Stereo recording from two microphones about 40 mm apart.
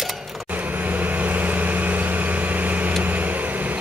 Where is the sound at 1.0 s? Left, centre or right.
Right.